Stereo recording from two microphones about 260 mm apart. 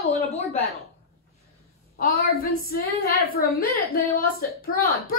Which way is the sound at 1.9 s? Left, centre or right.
Left.